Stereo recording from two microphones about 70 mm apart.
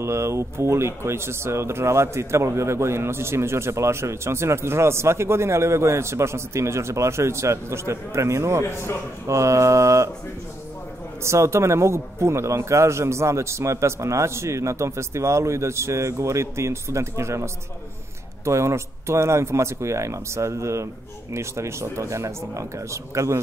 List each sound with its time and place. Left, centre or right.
0.0 s a man's voice: right
11.2 s a man's voice: right